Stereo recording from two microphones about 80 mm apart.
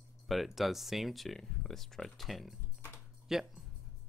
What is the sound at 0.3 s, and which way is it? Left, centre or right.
Speech, centre.